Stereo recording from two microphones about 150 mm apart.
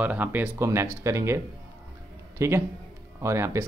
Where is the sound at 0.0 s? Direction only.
10° right (ahead or behind).